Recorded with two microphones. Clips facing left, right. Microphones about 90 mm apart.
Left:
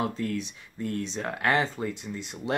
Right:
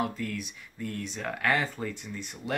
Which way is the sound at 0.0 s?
25° left (ahead or behind).